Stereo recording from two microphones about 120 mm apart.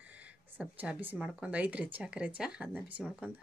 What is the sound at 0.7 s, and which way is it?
Speech, 10° right (ahead or behind).